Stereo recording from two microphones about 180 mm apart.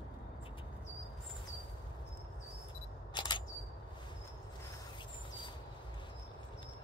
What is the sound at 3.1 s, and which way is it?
Single-lens reflex camera, 25° left (ahead or behind).